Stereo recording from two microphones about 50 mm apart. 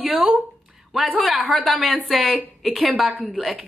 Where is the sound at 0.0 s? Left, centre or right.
Centre.